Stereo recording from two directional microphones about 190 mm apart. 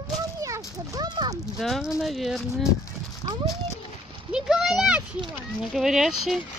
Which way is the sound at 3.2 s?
25° right (ahead or behind).